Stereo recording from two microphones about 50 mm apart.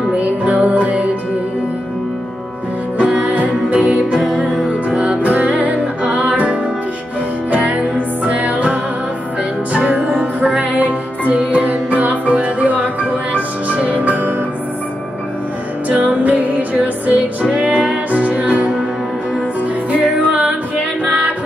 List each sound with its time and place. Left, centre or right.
0.1 s music: right
3.0 s music: right
3.8 s music: centre
4.6 s music: right
15.9 s music: right
19.9 s music: right